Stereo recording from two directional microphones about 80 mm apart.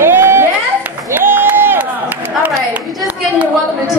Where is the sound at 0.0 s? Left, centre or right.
Right.